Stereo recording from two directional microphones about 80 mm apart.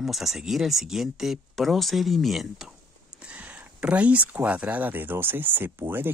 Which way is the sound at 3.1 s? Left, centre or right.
Centre.